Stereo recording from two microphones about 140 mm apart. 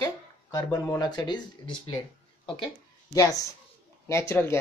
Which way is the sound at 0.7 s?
25° left (ahead or behind).